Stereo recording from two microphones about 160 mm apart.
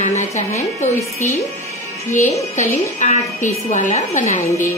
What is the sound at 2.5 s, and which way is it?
A woman's voice, 50° left (ahead or behind).